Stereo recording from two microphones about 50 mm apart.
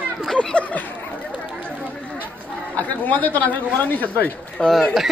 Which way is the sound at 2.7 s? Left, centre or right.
Left.